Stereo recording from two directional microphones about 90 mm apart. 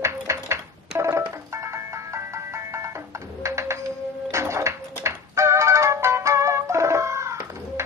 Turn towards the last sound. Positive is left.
turn(degrees=-30)  # may be behind; listen again after turning